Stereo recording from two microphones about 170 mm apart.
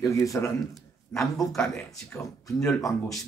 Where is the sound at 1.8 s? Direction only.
15° left (ahead or behind).